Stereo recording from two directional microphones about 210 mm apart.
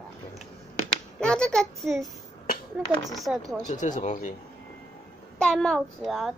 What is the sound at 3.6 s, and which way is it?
Speech, 35° left (ahead or behind).